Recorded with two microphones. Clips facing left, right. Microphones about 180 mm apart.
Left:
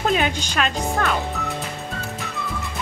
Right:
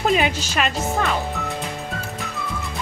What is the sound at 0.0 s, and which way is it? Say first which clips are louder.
Speech: right 1 dB; 5° right (ahead or behind).